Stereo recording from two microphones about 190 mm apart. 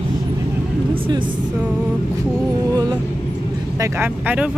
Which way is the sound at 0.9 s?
25° right (ahead or behind).